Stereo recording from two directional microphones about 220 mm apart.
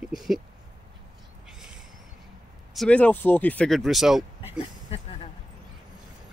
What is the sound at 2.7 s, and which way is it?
Speech, 5° left (ahead or behind).